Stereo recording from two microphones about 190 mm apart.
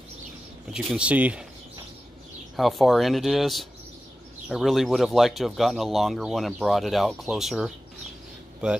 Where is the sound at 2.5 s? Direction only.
Centre (ahead or behind).